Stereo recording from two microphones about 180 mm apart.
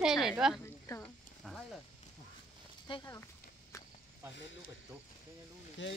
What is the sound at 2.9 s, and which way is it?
Speech, 30° left (ahead or behind).